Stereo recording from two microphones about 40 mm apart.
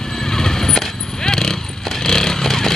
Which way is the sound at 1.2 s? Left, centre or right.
Centre.